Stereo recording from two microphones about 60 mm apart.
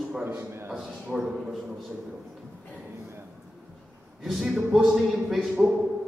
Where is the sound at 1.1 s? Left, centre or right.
Centre.